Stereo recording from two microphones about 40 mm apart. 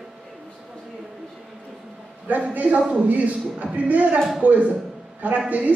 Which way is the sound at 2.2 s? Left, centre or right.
Right.